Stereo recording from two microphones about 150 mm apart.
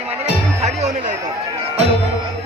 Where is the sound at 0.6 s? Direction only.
50° right (ahead or behind).